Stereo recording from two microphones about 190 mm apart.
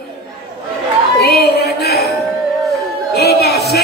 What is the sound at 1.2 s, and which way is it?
Music, 55° left (ahead or behind).